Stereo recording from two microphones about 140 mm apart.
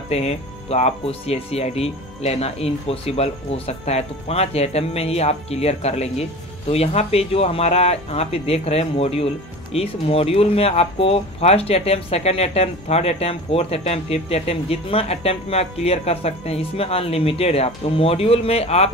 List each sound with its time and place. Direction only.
0.1 s speech: 50° left (ahead or behind)